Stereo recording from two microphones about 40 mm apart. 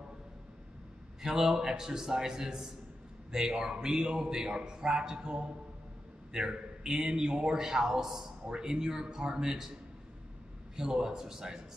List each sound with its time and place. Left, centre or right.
1.2 s a man's voice: centre
10.8 s a man's voice: centre